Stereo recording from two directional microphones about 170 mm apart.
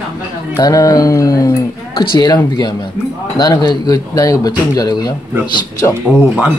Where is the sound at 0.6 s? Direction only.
20° left (ahead or behind).